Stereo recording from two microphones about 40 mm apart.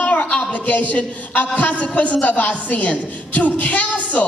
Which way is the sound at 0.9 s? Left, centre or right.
Left.